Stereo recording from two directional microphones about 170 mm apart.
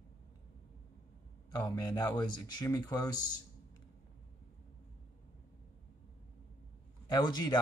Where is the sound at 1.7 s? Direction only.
20° left (ahead or behind).